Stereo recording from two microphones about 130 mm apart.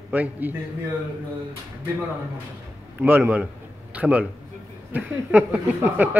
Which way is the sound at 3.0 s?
15° right (ahead or behind).